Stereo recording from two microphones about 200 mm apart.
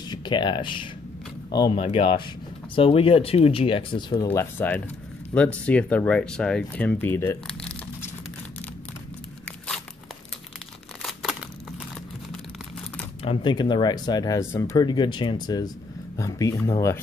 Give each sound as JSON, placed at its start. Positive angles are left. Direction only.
{"t": 0.1, "sound": "speech", "side_deg": 20}
{"t": 11.0, "sound": "crumpling", "side_deg": 0}
{"t": 13.2, "sound": "speech", "side_deg": 25}